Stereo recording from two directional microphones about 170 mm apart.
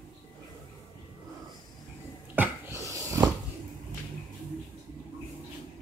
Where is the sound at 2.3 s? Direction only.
15° right (ahead or behind).